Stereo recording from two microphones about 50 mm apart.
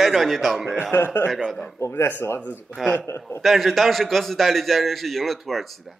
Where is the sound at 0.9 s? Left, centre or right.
Left.